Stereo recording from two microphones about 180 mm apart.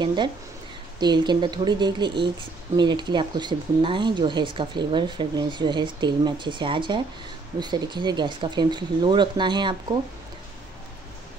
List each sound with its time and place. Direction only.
0.0 s speech: 25° right (ahead or behind)